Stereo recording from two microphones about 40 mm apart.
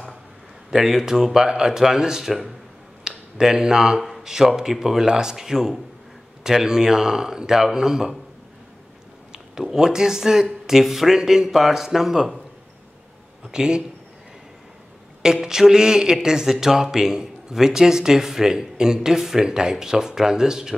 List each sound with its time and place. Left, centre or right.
0.7 s speech: centre
4.0 s a sound: centre
4.3 s speech: centre
9.3 s speech: centre
13.5 s a man's voice: right
15.4 s speech: centre